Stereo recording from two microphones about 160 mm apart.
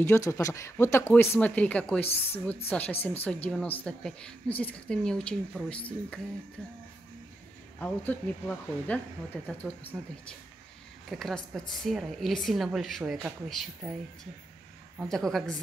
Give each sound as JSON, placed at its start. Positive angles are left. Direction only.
{"t": 0.0, "sound": "a woman's voice", "side_deg": 15}
{"t": 7.8, "sound": "a woman's voice", "side_deg": 10}
{"t": 11.1, "sound": "speech", "side_deg": 0}
{"t": 15.0, "sound": "speech", "side_deg": 0}